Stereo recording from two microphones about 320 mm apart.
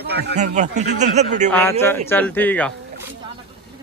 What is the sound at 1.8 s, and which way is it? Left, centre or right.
Speech, centre.